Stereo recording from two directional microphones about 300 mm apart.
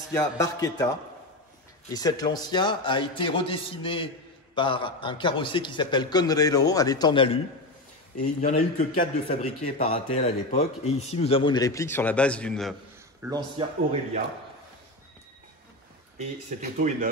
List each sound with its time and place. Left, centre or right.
0.1 s a man's voice: centre
2.0 s a man's voice: centre
13.2 s a man's voice: centre
16.2 s speech: right